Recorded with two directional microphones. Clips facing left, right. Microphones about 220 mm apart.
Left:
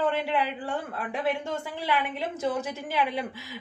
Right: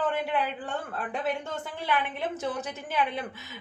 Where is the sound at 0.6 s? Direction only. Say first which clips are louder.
Left 2 dB; 10° left (ahead or behind).